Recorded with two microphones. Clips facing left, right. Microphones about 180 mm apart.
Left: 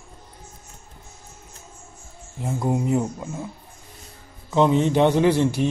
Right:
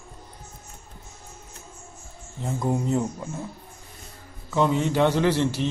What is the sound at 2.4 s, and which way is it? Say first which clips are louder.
Speech: left 2 dB; 10° left (ahead or behind).